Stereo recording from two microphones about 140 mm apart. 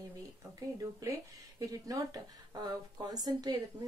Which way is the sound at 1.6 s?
25° right (ahead or behind).